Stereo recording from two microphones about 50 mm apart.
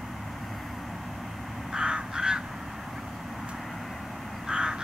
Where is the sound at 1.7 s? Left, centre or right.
Centre.